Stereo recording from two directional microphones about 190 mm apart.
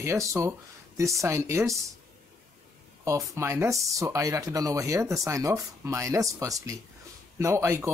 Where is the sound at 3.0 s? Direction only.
15° right (ahead or behind).